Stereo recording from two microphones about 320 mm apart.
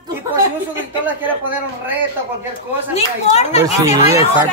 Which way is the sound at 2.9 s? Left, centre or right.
Centre.